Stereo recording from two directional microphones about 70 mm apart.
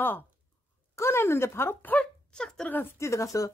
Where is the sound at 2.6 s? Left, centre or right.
Left.